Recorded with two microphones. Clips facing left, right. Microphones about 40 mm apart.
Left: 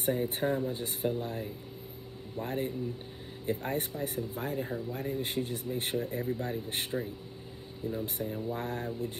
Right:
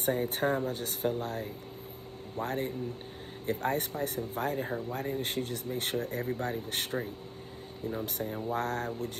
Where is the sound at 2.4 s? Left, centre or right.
Right.